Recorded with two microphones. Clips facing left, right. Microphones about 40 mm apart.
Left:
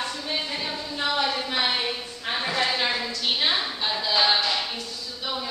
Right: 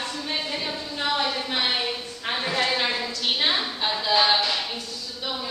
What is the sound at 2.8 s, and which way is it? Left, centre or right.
Music, centre.